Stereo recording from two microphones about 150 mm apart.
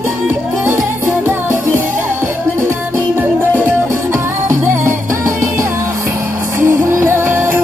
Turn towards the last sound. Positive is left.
turn(degrees=-15)  # may be behind; listen again after turning